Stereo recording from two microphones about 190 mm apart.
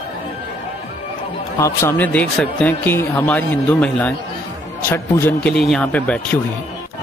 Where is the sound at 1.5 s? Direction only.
15° left (ahead or behind).